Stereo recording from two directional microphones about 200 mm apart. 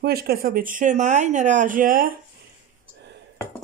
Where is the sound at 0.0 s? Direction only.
50° right (ahead or behind).